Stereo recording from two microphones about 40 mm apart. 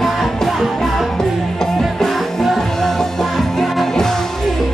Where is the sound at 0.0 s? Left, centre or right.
Centre.